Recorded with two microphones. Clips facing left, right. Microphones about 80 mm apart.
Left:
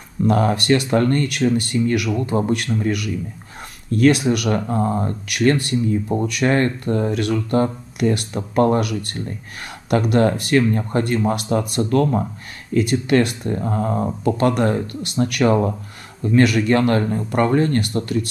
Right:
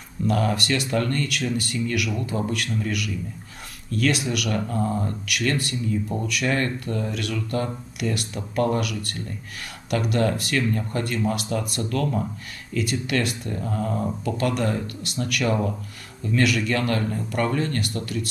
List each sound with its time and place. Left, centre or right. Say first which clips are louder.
0.3 s speech: left 6 dB; left